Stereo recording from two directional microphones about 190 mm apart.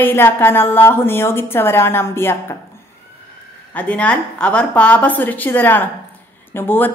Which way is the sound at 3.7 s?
5° left (ahead or behind).